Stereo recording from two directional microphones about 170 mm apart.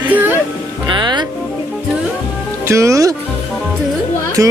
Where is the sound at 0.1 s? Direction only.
10° right (ahead or behind).